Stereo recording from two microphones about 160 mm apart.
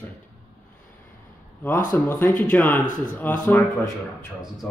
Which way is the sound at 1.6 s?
15° left (ahead or behind).